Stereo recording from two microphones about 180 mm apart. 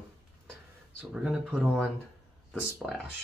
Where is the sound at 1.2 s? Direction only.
5° right (ahead or behind).